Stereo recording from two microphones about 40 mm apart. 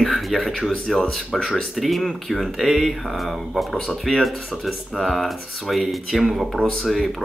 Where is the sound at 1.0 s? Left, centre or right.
Centre.